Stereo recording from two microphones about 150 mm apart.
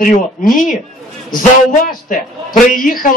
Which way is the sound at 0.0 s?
65° left (ahead or behind).